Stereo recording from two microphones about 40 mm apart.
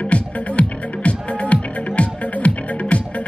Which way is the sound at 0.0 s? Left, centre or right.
Left.